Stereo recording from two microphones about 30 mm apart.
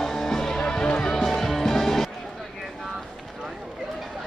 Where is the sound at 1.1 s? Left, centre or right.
Centre.